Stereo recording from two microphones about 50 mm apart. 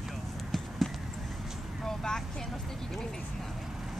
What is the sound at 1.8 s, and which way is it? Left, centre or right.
Speech, centre.